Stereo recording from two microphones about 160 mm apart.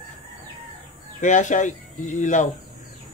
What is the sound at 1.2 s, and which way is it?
Speech, 50° left (ahead or behind).